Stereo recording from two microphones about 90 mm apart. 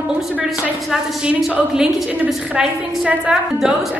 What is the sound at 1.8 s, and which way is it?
A woman's voice, 5° right (ahead or behind).